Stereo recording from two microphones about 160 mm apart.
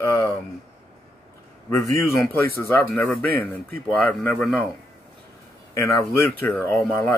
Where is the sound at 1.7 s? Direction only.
20° left (ahead or behind); by 4.7 s 5° left (ahead or behind).